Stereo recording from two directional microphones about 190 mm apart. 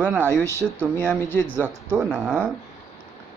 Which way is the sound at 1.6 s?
10° right (ahead or behind).